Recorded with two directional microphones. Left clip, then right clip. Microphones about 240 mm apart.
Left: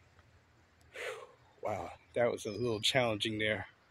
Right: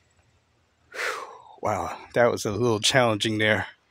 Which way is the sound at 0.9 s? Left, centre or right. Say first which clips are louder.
Right 13 dB; right.